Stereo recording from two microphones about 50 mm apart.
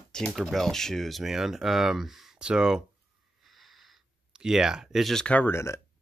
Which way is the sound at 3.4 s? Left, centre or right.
Centre.